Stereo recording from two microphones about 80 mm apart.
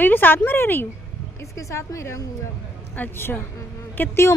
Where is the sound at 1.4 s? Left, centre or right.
Left.